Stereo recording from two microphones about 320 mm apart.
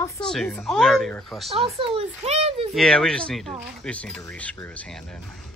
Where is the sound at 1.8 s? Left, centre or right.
Centre.